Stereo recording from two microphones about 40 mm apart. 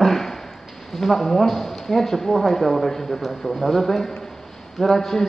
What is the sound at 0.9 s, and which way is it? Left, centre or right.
Speech, centre.